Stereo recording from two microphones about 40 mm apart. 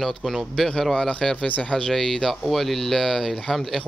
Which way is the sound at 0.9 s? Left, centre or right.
Left.